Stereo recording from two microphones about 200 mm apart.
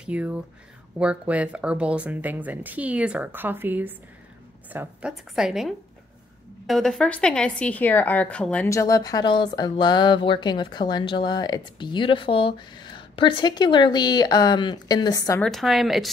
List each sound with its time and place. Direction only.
0.0 s a woman's voice: 5° right (ahead or behind); by 15.4 s 15° left (ahead or behind)
15.4 s a woman's voice: centre (ahead or behind)